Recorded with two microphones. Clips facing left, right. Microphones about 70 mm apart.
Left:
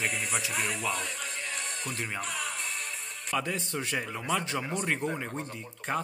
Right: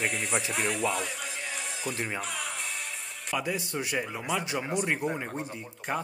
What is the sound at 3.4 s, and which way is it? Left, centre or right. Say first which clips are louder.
A man's voice: right 2 dB; centre.